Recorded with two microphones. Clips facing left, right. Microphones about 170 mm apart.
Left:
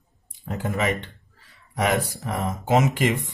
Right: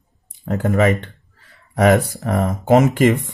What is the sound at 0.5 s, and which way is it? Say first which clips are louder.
Speech: right 8 dB; 55° right (ahead or behind).